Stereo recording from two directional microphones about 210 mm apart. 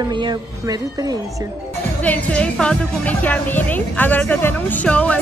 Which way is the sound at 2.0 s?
5° left (ahead or behind).